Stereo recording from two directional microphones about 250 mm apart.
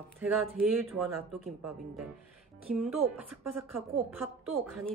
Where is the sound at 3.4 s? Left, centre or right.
Right.